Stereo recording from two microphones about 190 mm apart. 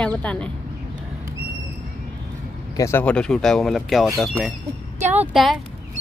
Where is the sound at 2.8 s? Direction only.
10° left (ahead or behind).